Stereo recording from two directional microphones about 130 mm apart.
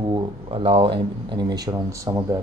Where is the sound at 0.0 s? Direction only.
40° right (ahead or behind).